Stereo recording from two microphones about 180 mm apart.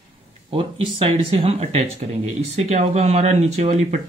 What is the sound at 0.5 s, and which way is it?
Speech, 30° right (ahead or behind).